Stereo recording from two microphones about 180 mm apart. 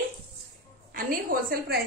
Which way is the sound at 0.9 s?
55° right (ahead or behind).